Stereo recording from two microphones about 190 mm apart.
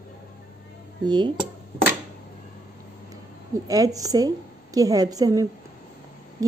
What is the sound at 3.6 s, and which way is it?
Speech, 20° right (ahead or behind).